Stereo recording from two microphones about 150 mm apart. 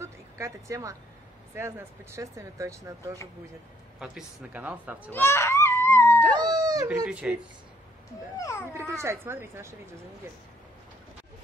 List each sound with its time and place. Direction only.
0.0 s a sound: 20° right (ahead or behind)
1.5 s speech: 15° right (ahead or behind)
4.0 s speech: 5° right (ahead or behind)
5.1 s wail: 15° left (ahead or behind)
6.2 s dog: 30° right (ahead or behind)
7.1 s speech: 5° right (ahead or behind)
8.4 s a child's voice: 20° left (ahead or behind)
8.7 s speech: 20° right (ahead or behind)